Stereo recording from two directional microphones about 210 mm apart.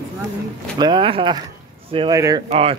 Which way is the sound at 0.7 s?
20° right (ahead or behind).